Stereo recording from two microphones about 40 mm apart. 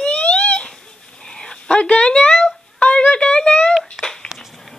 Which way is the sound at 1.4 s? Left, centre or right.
Left.